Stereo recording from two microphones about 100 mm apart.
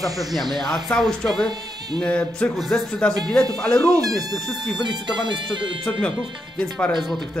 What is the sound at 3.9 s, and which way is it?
Speech, 35° right (ahead or behind).